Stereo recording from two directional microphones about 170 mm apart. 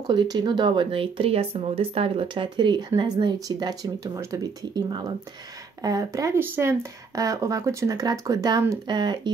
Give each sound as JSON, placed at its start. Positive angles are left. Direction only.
{"t": 0.0, "sound": "speech", "side_deg": -25}